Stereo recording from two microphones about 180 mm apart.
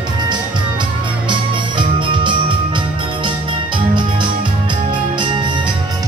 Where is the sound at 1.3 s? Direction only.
25° right (ahead or behind).